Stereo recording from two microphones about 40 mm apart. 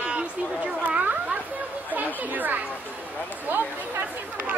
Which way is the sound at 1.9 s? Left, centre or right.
Right.